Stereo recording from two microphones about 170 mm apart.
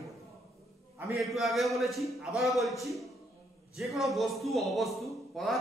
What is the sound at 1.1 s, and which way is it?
A man's voice, centre (ahead or behind).